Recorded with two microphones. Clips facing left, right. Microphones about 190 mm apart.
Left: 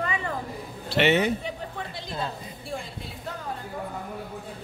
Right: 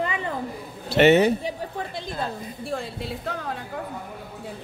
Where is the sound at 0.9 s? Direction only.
40° right (ahead or behind).